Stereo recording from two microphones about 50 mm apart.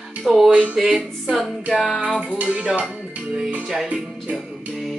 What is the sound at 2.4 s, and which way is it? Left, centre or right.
Music, right.